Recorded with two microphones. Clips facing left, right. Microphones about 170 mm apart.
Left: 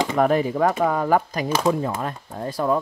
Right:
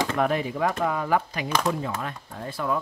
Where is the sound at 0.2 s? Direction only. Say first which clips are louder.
Left 7 dB; 40° left (ahead or behind).